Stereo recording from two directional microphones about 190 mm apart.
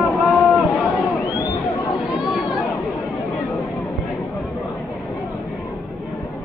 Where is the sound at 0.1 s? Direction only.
Centre (ahead or behind).